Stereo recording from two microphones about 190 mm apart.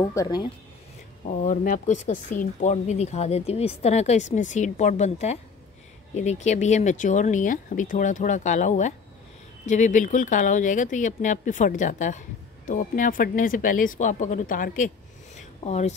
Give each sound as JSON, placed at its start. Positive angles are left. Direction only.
{"t": 0.1, "sound": "speech", "side_deg": 20}
{"t": 1.2, "sound": "speech", "side_deg": 45}
{"t": 15.6, "sound": "speech", "side_deg": 35}